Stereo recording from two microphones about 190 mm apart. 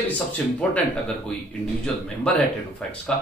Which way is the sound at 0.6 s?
5° left (ahead or behind).